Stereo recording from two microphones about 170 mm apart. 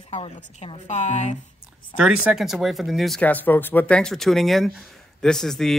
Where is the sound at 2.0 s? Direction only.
Centre (ahead or behind).